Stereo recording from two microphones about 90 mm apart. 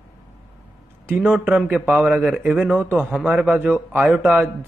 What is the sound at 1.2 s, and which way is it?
Speech, 10° right (ahead or behind).